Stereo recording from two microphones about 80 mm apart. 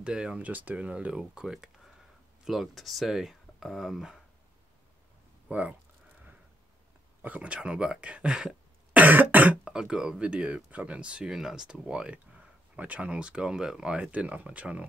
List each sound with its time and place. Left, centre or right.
0.0 s speech: centre
5.5 s speech: centre
7.2 s speech: centre
9.0 s cough: right
9.7 s speech: centre